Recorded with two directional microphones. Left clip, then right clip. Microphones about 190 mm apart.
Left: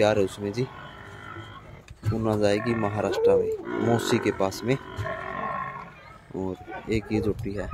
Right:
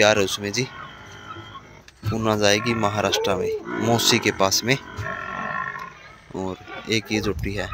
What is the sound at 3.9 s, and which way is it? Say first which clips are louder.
Speech: right 5 dB; 5° left (ahead or behind).